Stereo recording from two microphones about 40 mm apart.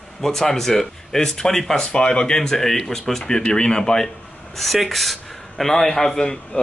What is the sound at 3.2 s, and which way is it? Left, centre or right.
Speech, left.